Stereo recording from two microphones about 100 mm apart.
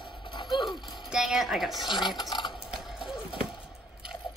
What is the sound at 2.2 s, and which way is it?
Typing, 50° left (ahead or behind).